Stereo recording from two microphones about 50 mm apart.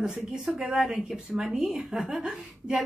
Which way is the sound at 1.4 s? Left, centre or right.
Centre.